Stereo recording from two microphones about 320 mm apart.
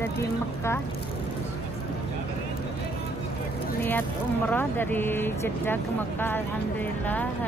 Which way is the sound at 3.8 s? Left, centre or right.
Centre.